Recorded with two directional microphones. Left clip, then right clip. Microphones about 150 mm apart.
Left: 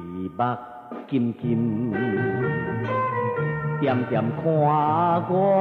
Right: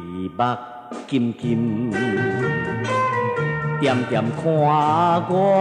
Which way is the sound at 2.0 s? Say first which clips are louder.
Right 3 dB; 35° right (ahead or behind).